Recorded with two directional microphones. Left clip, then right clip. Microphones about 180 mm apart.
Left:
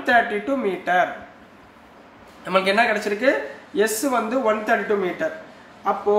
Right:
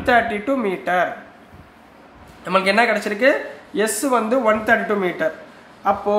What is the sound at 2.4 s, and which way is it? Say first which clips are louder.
A man's voice: right 2 dB; 25° right (ahead or behind).